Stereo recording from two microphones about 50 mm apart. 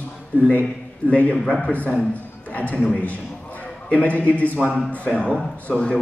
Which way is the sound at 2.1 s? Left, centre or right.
Left.